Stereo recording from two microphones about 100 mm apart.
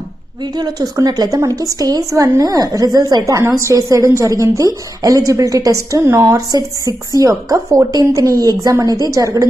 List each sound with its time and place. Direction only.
0.6 s a woman's voice: 40° right (ahead or behind)